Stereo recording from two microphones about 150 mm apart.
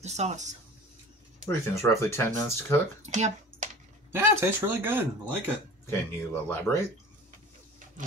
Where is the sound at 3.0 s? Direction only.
50° right (ahead or behind).